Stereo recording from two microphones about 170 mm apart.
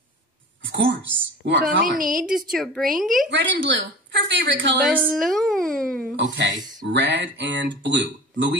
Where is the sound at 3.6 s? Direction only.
90° right.